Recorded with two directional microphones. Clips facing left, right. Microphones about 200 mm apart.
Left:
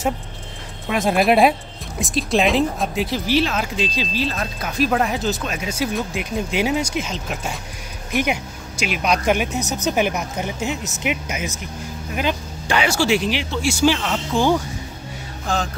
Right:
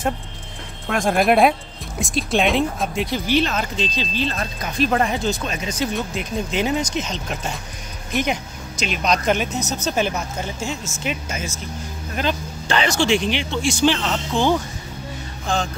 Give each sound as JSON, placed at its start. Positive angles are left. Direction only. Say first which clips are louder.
{"t": 0.8, "sound": "speech", "louder": "even", "side_deg": 5}
{"t": 15.4, "sound": "music", "louder": "even", "side_deg": 5}